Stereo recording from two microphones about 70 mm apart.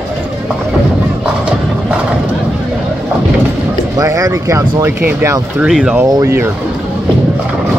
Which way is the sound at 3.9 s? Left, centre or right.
Right.